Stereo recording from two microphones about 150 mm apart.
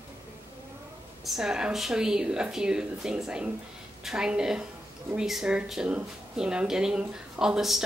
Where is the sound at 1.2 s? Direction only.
5° right (ahead or behind).